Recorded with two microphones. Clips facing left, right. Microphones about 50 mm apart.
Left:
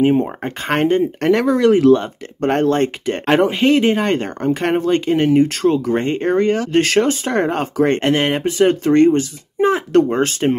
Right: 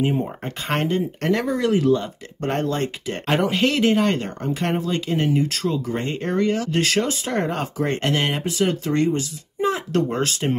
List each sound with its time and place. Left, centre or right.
0.0 s speech: left
1.4 s speech: left
1.7 s speech: left
3.4 s a man's voice: left
4.0 s speech: left
5.9 s speech: left
10.4 s a man's voice: left